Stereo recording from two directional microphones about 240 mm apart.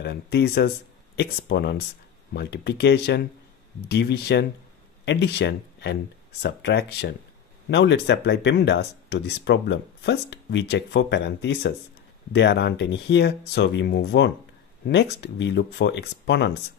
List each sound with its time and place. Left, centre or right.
0.0 s speech: left